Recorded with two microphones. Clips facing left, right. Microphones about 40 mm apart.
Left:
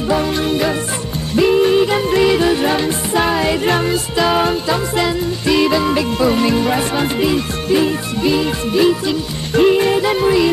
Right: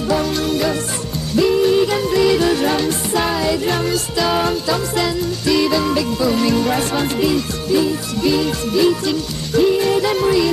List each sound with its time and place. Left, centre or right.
0.1 s music: left
3.8 s music: left
9.5 s music: left
9.8 s music: left